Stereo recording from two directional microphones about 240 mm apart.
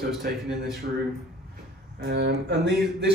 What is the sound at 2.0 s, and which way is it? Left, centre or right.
Speech, right.